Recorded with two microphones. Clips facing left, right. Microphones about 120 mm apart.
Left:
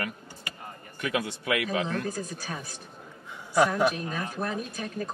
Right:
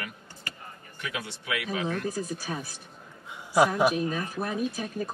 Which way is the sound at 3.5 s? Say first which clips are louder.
Right 1 dB; 5° right (ahead or behind).